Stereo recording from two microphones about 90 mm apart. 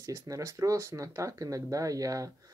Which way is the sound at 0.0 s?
35° right (ahead or behind).